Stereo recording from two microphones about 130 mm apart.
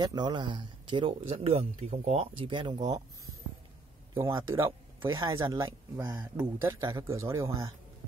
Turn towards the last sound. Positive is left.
turn(degrees=-25)  # may be behind; listen again after turning